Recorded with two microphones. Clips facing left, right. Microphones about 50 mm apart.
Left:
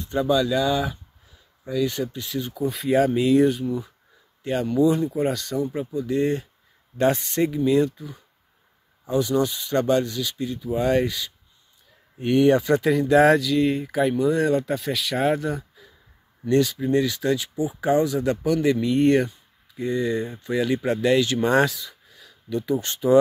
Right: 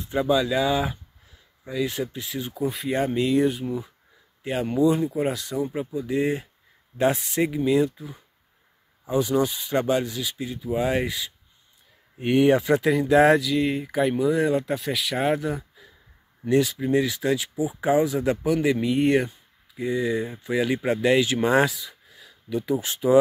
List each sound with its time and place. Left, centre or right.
0.0 s speech: centre
9.2 s speech: right